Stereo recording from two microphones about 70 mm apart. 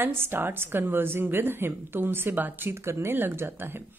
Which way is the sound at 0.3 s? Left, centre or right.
Right.